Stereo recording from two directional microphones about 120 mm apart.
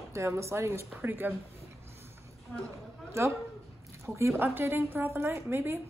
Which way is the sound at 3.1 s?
25° right (ahead or behind).